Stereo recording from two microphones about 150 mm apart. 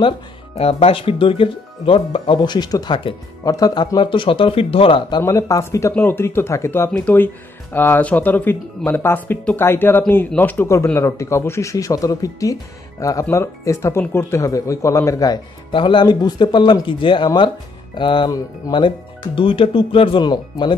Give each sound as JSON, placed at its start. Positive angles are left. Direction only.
{"t": 0.6, "sound": "speech", "side_deg": 40}
{"t": 5.2, "sound": "speech", "side_deg": 20}